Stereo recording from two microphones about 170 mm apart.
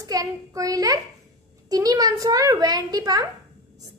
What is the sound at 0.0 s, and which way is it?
A child's voice, 20° right (ahead or behind).